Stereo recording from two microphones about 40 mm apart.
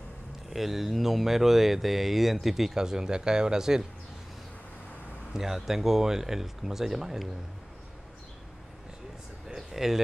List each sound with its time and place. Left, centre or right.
0.5 s speech: centre
5.3 s speech: centre
9.6 s a sound: centre